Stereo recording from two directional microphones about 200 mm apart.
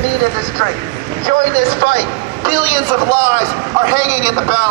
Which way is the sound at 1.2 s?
40° right (ahead or behind).